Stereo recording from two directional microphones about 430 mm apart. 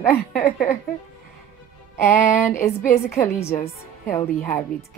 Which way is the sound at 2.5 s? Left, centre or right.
Centre.